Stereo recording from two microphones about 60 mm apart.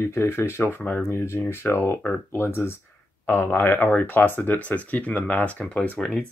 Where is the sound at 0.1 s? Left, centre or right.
Left.